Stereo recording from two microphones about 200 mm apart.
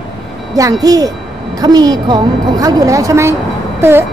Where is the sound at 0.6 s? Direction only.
15° right (ahead or behind).